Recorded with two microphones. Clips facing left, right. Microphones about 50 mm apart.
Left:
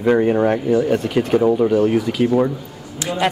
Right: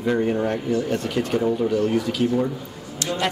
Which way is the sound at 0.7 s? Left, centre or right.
Centre.